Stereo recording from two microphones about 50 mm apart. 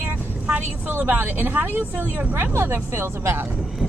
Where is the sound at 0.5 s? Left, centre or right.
Right.